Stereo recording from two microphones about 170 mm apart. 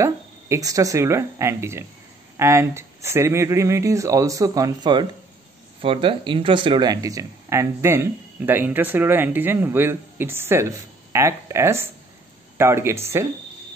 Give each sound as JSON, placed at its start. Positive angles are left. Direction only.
{"t": 0.0, "sound": "speech", "side_deg": -20}